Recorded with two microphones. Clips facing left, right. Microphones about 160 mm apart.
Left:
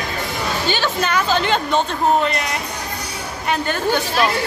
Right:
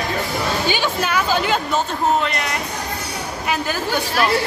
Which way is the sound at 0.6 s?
10° right (ahead or behind).